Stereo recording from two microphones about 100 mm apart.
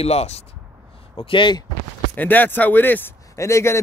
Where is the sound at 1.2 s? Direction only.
55° left (ahead or behind).